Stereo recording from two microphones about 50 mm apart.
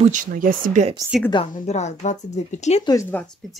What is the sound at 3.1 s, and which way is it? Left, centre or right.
Speech, left.